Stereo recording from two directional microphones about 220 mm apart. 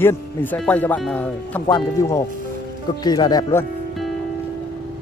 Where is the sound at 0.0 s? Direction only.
10° left (ahead or behind).